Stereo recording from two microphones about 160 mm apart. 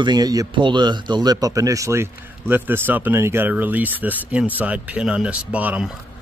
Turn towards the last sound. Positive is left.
turn(degrees=-10)  # may be behind; listen again after turning